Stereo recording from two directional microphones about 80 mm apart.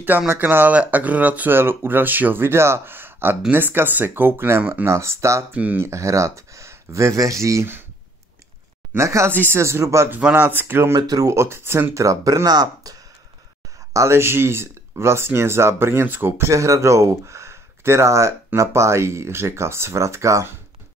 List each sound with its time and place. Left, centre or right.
0.3 s speech: right
4.9 s speech: right
5.5 s speech: centre
5.8 s speech: right
8.9 s speech: right
10.3 s speech: right
11.0 s speech: right
13.9 s speech: right